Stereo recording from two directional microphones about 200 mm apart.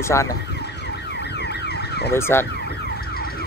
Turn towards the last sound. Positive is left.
turn(degrees=50)  # may be behind; listen again after turning